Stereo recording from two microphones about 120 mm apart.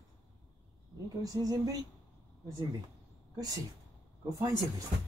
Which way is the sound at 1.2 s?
30° right (ahead or behind).